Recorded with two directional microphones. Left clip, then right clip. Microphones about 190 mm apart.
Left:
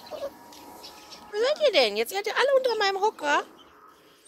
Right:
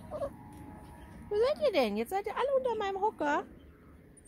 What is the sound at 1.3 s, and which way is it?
Speech, 20° right (ahead or behind).